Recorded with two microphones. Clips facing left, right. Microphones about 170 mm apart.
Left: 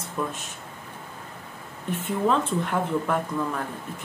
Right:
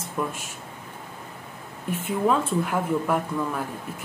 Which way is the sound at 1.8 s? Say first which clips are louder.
Right 1 dB; 10° right (ahead or behind).